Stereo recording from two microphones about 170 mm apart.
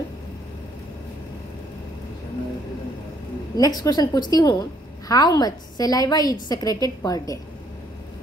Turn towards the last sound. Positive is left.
turn(degrees=20)  # may be behind; listen again after turning